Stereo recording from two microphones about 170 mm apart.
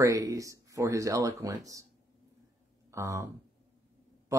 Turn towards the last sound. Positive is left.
turn(degrees=-15)  # may be behind; listen again after turning